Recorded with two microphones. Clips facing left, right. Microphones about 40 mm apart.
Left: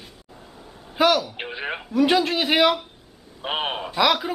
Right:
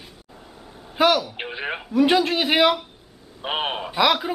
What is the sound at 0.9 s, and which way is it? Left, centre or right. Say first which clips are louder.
A man's voice: even; centre.